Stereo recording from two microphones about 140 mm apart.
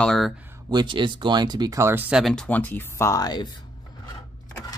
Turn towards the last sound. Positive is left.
turn(degrees=30)  # may be behind; listen again after turning